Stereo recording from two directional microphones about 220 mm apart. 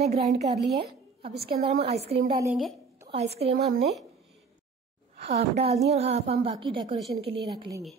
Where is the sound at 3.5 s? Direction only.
45° right (ahead or behind).